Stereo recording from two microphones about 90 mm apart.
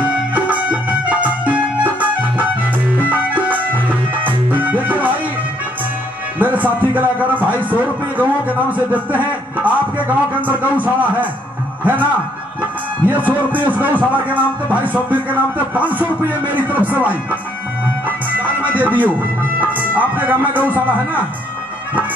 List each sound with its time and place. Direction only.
0.0 s music: 15° right (ahead or behind)
6.4 s a sound: 20° right (ahead or behind)
11.8 s music: 20° right (ahead or behind)
18.7 s speech: 20° right (ahead or behind)